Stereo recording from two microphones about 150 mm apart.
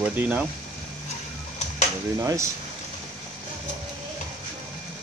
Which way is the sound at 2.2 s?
20° right (ahead or behind).